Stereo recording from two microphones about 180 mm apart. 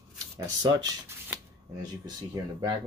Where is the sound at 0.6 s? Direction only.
20° right (ahead or behind).